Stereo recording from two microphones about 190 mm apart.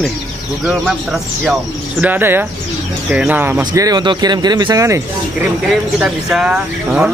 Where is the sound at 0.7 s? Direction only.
5° right (ahead or behind).